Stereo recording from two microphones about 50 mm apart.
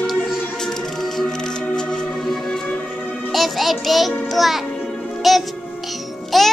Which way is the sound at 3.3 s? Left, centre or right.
Centre.